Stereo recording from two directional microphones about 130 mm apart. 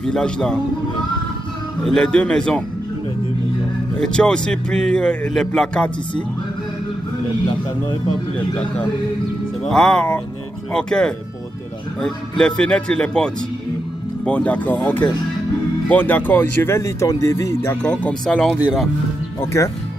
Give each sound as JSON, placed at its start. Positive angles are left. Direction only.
{"t": 0.0, "sound": "a man's voice", "side_deg": 5}
{"t": 1.9, "sound": "a man's voice", "side_deg": 5}
{"t": 4.0, "sound": "speech", "side_deg": 5}
{"t": 9.6, "sound": "a man's voice", "side_deg": 5}
{"t": 19.4, "sound": "speech", "side_deg": 20}